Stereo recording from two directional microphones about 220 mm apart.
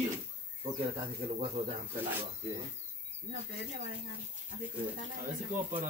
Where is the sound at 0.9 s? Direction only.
25° right (ahead or behind).